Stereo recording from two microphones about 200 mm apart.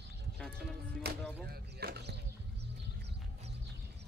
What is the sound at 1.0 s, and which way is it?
Speech, 55° right (ahead or behind).